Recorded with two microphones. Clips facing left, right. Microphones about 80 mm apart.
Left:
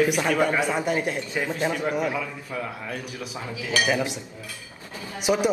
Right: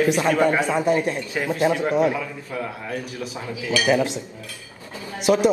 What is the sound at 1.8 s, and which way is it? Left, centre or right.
Speech, right.